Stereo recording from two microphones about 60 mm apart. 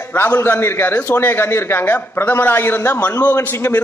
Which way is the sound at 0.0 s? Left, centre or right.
Left.